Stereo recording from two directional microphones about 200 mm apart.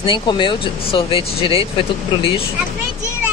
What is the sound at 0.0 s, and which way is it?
Speech, 25° left (ahead or behind).